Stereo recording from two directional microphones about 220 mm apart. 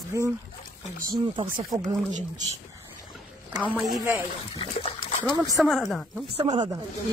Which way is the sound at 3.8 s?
10° right (ahead or behind).